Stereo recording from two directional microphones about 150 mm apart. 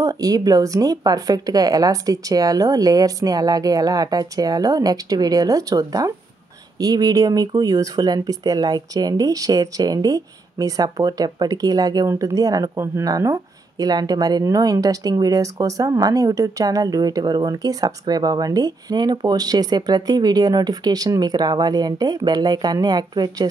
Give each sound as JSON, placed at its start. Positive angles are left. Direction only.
{"t": 0.0, "sound": "speech", "side_deg": -25}